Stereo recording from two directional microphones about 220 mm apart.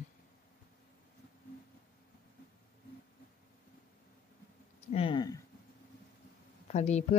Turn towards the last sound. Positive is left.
turn(degrees=30)  # may be behind; listen again after turning